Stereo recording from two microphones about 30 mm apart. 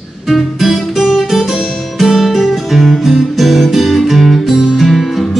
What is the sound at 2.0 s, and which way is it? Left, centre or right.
Guitar, centre.